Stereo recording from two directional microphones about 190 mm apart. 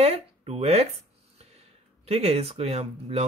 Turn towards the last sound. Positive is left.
turn(degrees=-30)  # may be behind; listen again after turning